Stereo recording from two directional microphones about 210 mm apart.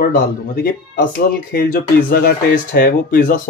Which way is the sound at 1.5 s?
45° left (ahead or behind).